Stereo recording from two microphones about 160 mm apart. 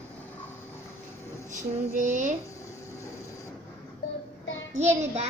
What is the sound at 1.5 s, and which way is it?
Child singing, 50° right (ahead or behind).